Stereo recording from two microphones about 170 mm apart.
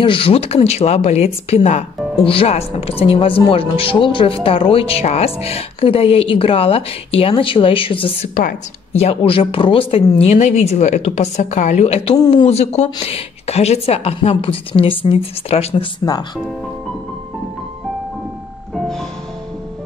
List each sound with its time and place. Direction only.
0.0 s speech: 30° left (ahead or behind)
8.4 s speech: 45° left (ahead or behind)